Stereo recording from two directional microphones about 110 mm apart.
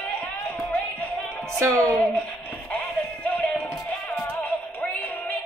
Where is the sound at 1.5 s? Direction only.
25° right (ahead or behind).